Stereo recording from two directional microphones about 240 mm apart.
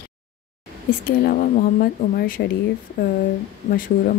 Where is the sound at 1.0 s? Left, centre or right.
Left.